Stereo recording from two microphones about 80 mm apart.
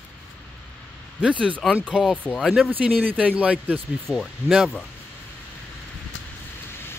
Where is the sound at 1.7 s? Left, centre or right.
Centre.